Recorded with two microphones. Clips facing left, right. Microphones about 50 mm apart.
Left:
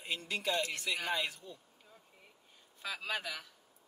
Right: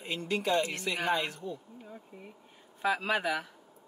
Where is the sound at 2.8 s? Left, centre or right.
Right.